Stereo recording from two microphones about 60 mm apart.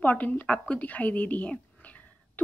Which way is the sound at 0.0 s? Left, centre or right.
Left.